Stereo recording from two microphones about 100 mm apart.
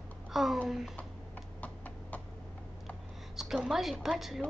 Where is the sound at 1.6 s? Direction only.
15° left (ahead or behind).